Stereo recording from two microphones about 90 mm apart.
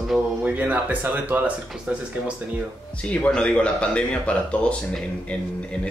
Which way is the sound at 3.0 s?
10° left (ahead or behind).